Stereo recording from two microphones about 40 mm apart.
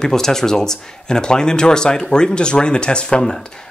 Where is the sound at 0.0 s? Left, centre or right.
Centre.